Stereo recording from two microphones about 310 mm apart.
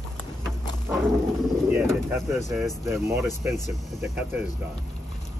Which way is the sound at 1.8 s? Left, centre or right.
Centre.